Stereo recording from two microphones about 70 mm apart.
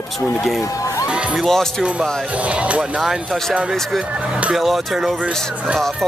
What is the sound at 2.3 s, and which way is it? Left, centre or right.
Speech, centre.